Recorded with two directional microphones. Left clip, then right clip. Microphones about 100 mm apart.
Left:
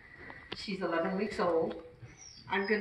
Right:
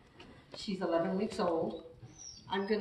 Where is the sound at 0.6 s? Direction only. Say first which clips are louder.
Even; 25° right (ahead or behind).